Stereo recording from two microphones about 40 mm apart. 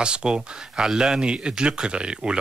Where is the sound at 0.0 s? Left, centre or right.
Right.